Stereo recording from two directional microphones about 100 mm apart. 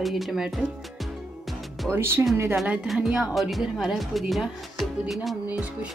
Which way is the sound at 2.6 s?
15° right (ahead or behind).